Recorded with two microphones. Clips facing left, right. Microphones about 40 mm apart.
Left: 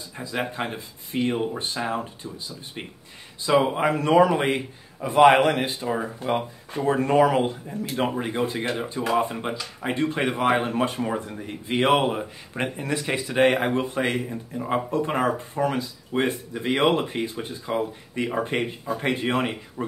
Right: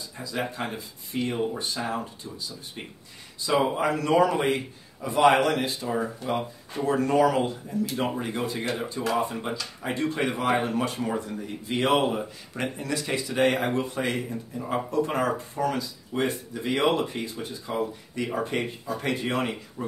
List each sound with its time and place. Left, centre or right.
0.2 s speech: left
3.7 s speech: left
9.5 s speech: centre
9.8 s speech: left
14.1 s speech: centre